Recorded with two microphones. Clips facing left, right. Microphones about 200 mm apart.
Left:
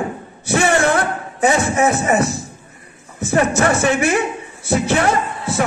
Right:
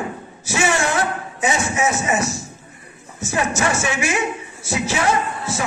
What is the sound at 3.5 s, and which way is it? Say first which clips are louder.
A woman's voice: left 6 dB; 60° left (ahead or behind).